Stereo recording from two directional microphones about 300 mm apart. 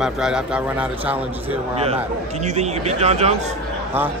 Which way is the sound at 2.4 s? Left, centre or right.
Right.